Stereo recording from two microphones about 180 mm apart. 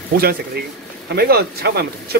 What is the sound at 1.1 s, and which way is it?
Speech, 60° right (ahead or behind).